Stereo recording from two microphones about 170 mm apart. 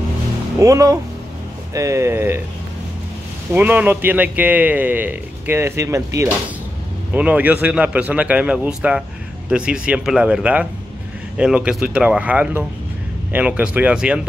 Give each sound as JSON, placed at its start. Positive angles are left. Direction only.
{"t": 0.6, "sound": "a man's voice", "side_deg": -20}
{"t": 3.5, "sound": "a man's voice", "side_deg": -10}